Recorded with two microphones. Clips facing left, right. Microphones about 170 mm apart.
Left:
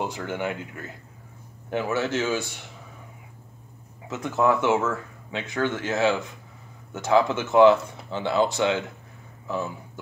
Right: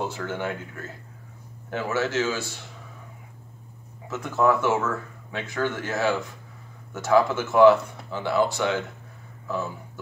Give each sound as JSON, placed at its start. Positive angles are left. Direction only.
{"t": 0.0, "sound": "speech", "side_deg": 15}
{"t": 1.7, "sound": "speech", "side_deg": 15}
{"t": 4.1, "sound": "speech", "side_deg": 20}